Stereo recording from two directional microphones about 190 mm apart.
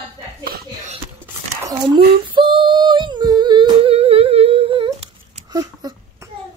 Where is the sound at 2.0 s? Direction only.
25° right (ahead or behind).